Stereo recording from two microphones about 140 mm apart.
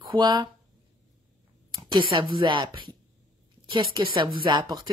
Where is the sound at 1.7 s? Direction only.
30° right (ahead or behind).